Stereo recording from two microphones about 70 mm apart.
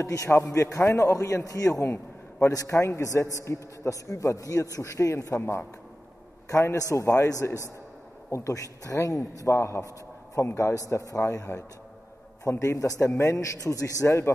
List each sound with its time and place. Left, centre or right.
0.0 s a man's voice: left
4.8 s a man's voice: left